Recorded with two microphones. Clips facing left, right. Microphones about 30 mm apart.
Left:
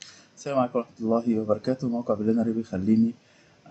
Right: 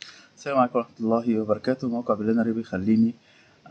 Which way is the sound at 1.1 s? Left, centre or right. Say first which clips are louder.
Even; right.